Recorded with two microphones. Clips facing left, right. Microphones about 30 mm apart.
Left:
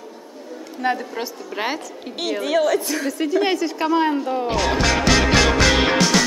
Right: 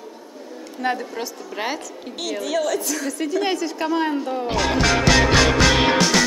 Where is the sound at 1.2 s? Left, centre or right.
Centre.